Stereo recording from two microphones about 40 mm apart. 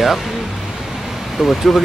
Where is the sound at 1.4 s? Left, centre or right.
Centre.